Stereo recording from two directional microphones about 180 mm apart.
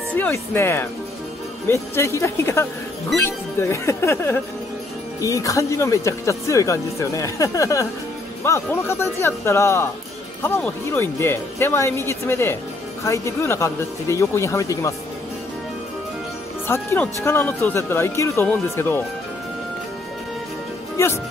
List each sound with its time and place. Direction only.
0.1 s speech: 10° left (ahead or behind)
16.6 s speech: 15° left (ahead or behind)
21.0 s speech: 15° left (ahead or behind)